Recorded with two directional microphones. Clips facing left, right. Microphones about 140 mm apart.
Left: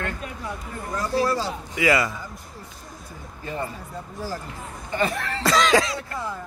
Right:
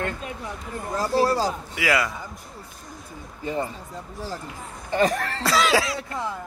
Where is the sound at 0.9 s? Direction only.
35° right (ahead or behind).